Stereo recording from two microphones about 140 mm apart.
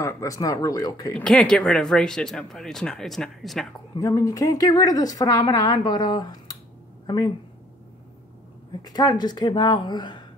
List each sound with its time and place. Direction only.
0.0 s a woman's voice: 25° left (ahead or behind)
1.1 s speech: 5° left (ahead or behind)
3.9 s a woman's voice: 25° left (ahead or behind)
8.8 s a woman's voice: 30° left (ahead or behind)